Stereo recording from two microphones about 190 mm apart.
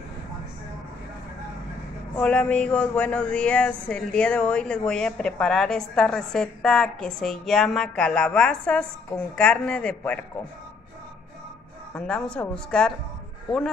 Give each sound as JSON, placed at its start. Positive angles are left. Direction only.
{"t": 2.1, "sound": "speech", "side_deg": 5}
{"t": 11.9, "sound": "speech", "side_deg": 5}